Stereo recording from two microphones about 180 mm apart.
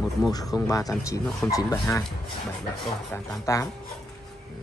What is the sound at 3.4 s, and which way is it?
Speech, 15° left (ahead or behind).